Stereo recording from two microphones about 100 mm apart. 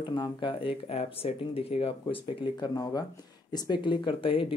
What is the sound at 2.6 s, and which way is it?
Speech, 40° left (ahead or behind).